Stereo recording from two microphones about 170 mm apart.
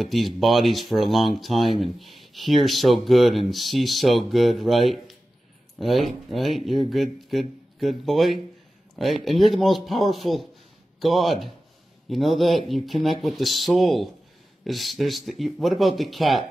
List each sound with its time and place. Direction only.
0.0 s speech: centre (ahead or behind)